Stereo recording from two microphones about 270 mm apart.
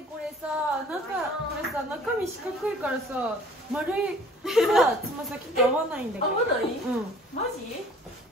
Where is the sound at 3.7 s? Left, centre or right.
Centre.